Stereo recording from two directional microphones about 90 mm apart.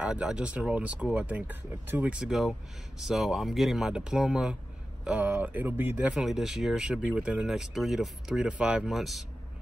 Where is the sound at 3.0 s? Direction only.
5° right (ahead or behind); by 6.1 s 20° right (ahead or behind).